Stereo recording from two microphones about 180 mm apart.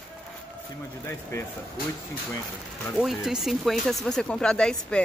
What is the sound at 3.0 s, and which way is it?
Speech, 5° right (ahead or behind).